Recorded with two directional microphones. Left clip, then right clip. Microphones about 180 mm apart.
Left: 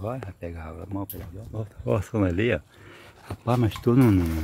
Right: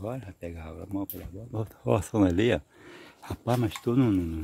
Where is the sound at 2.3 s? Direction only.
30° right (ahead or behind).